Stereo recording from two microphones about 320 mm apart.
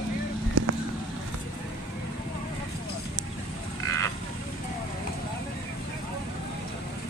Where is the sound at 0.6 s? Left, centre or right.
Right.